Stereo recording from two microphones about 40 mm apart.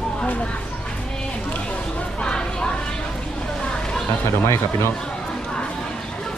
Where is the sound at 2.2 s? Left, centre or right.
Left.